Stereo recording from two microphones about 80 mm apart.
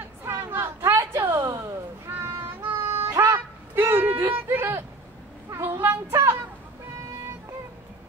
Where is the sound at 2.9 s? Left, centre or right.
Right.